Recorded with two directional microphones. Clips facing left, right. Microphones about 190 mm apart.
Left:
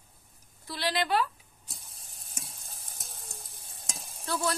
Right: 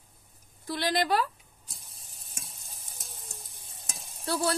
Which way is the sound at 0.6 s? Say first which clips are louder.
Right 3 dB; 50° right (ahead or behind).